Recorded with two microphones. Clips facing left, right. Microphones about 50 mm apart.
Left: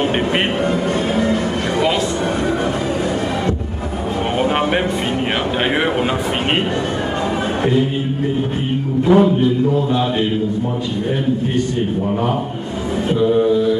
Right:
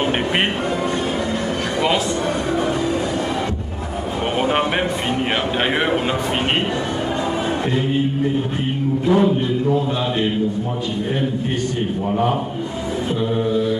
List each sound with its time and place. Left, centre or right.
9.1 s a man's voice: left